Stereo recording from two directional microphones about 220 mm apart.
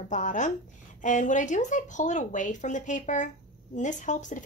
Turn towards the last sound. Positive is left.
turn(degrees=35)  # may be behind; listen again after turning